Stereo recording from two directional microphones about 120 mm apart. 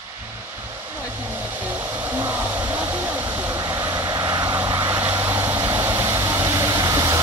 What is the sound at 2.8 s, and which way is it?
Vehicle, 15° right (ahead or behind).